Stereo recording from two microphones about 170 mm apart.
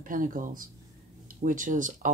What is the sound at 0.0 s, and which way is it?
Speech, 50° right (ahead or behind).